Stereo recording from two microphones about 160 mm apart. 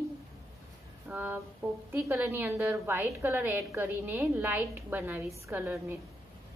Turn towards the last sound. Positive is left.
turn(degrees=-15)  # may be behind; listen again after turning